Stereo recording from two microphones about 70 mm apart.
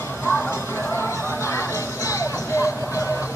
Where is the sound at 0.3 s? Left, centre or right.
Left.